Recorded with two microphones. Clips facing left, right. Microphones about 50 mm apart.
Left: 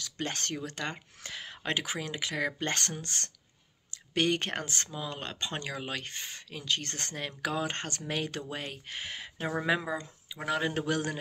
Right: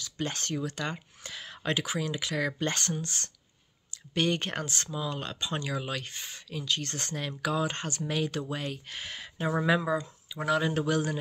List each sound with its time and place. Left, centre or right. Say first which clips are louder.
0.0 s speech: right 1 dB; left
2.7 s speech: right 1 dB; left; by 10.5 s centre
10.5 s speech: right 3 dB; left